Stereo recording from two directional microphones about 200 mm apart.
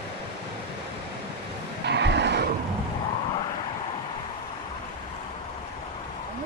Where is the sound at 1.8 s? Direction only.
60° right (ahead or behind).